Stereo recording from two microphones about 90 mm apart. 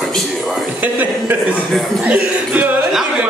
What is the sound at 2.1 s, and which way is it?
Speech, 15° right (ahead or behind).